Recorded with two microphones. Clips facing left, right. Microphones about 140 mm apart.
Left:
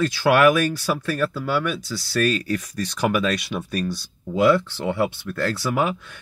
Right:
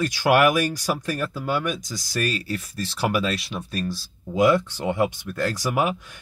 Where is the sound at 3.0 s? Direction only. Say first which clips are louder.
Left 2 dB; 5° right (ahead or behind).